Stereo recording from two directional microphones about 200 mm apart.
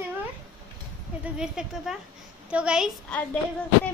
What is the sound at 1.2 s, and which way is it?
A woman's voice, 5° right (ahead or behind).